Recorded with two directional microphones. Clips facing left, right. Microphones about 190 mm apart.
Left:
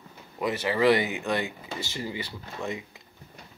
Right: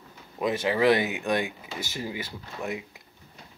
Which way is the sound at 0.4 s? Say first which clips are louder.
Right 1 dB; 15° right (ahead or behind).